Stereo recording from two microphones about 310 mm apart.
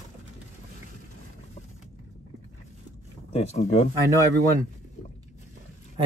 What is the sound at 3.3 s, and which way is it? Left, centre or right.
Speech, left.